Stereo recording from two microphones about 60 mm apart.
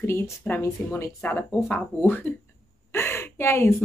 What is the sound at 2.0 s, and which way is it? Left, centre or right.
Speech, left.